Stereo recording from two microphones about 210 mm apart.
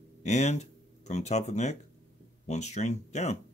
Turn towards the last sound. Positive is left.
turn(degrees=35)  # may be behind; listen again after turning